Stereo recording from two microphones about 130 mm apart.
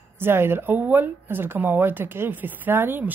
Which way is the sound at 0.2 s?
15° right (ahead or behind).